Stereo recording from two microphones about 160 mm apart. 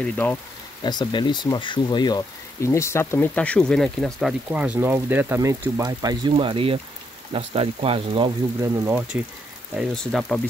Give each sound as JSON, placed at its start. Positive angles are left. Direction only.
{"t": 0.0, "sound": "speech", "side_deg": 10}
{"t": 0.8, "sound": "speech", "side_deg": 25}
{"t": 6.3, "sound": "speech", "side_deg": -35}
{"t": 8.6, "sound": "speech", "side_deg": -20}
{"t": 8.9, "sound": "speech", "side_deg": -5}